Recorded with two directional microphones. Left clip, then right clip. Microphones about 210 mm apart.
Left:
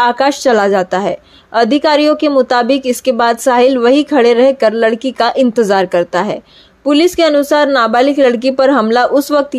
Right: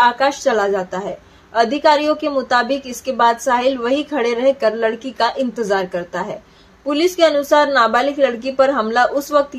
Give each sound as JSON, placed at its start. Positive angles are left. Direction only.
{"t": 0.0, "sound": "a woman's voice", "side_deg": 40}